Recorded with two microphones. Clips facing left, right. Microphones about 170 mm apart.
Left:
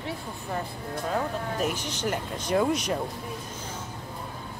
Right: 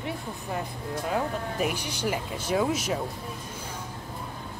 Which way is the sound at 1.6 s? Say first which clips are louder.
Right 1 dB; 10° right (ahead or behind).